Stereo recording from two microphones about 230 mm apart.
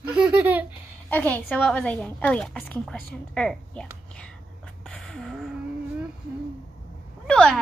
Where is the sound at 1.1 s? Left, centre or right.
Centre.